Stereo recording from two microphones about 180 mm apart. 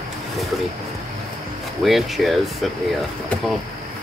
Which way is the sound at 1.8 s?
Centre (ahead or behind).